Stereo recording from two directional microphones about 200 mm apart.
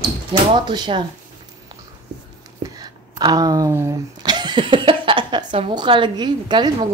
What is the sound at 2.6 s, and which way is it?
Speech, 20° right (ahead or behind).